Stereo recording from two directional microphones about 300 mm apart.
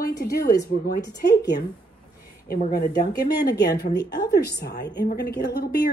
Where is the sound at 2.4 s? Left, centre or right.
Left.